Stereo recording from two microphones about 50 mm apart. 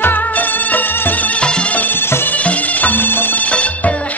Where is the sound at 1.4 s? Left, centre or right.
Left.